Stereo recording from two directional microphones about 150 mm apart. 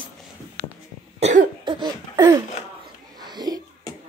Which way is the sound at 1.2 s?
55° right (ahead or behind).